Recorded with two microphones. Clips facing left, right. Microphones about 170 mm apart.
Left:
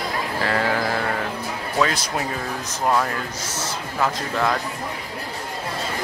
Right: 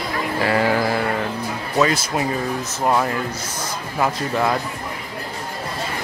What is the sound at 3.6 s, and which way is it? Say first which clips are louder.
Speech: right 2 dB; 10° right (ahead or behind).